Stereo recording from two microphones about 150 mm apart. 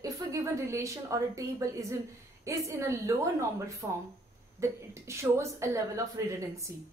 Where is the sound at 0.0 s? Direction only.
20° right (ahead or behind).